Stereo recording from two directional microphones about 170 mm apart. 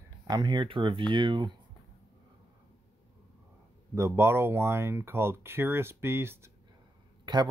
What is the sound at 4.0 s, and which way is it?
Speech, 15° right (ahead or behind).